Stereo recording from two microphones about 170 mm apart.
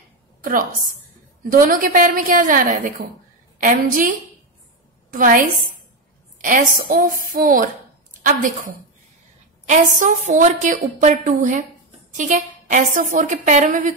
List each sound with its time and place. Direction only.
0.4 s a woman's voice: 55° right (ahead or behind)